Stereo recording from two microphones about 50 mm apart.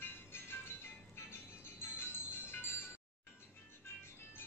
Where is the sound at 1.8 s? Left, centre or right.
Left.